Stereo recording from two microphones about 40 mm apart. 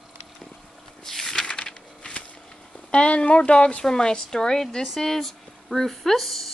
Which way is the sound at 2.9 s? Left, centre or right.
Left.